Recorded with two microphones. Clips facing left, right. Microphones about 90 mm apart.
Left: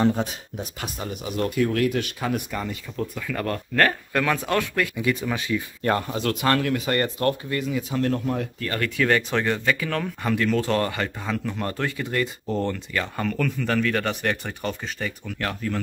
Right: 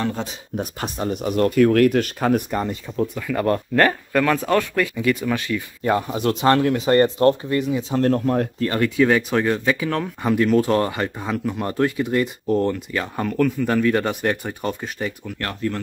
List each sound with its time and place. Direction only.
0.0 s speech: 15° left (ahead or behind)
0.6 s speech: 40° right (ahead or behind)
3.2 s speech: 10° right (ahead or behind)
4.9 s speech: 10° left (ahead or behind)
5.8 s speech: 10° right (ahead or behind)
7.9 s speech: 40° right (ahead or behind)
8.5 s speech: 25° right (ahead or behind)
12.4 s speech: centre (ahead or behind)
12.7 s speech: 10° right (ahead or behind)
15.3 s speech: centre (ahead or behind)